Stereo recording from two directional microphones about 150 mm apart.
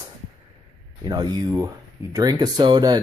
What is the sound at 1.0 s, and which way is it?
Speech, 25° right (ahead or behind).